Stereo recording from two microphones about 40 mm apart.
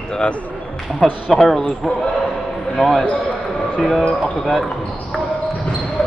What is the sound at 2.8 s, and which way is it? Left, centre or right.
Speech, centre.